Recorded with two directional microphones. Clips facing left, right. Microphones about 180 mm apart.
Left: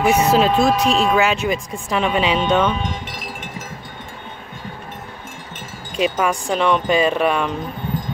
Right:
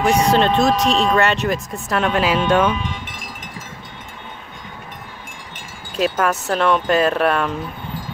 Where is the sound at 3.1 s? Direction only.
45° right (ahead or behind).